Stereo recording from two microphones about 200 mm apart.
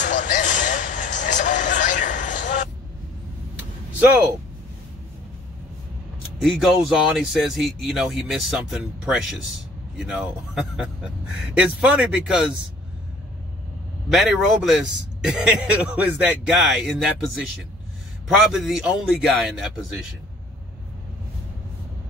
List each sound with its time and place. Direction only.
0.0 s a sound: 40° left (ahead or behind)
6.4 s speech: centre (ahead or behind)
14.0 s speech: centre (ahead or behind)
18.5 s speech: centre (ahead or behind)